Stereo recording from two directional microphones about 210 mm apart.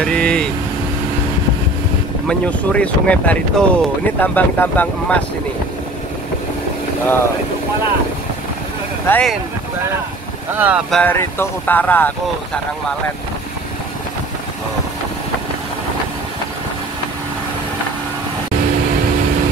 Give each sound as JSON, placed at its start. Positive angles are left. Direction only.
{"t": 0.0, "sound": "vehicle", "side_deg": 5}
{"t": 2.2, "sound": "speech", "side_deg": 5}
{"t": 9.0, "sound": "speech", "side_deg": 5}
{"t": 10.6, "sound": "speech", "side_deg": -5}
{"t": 11.0, "sound": "speech", "side_deg": 10}